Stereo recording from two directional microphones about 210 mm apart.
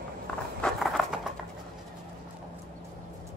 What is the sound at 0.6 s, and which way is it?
Patter, centre (ahead or behind).